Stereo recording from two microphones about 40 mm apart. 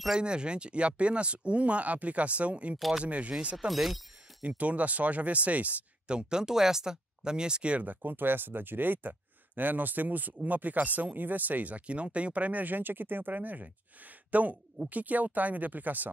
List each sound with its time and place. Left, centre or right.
0.1 s speech: right
3.5 s speech: centre
4.4 s speech: right
6.0 s speech: centre
7.7 s speech: right